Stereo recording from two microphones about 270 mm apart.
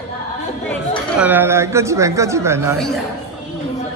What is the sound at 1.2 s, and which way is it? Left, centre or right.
Speech, centre.